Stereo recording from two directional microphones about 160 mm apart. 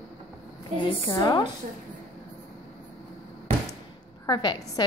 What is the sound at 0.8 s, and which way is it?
Speech, 30° left (ahead or behind).